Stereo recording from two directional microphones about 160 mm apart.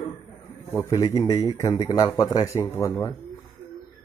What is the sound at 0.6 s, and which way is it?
Speech, 15° left (ahead or behind).